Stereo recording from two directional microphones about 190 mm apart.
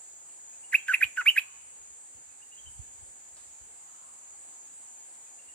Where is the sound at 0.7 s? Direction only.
5° left (ahead or behind).